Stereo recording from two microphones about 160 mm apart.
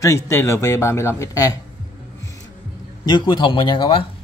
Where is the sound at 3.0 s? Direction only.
25° left (ahead or behind).